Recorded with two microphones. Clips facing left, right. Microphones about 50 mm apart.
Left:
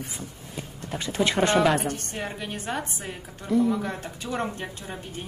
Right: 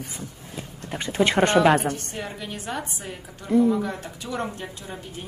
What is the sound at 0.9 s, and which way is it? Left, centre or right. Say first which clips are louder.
Speech: right 3 dB; right.